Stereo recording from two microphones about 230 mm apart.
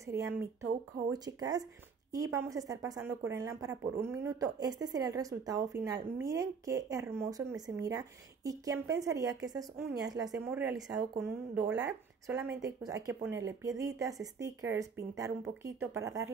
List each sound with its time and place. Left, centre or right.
0.0 s a woman's voice: centre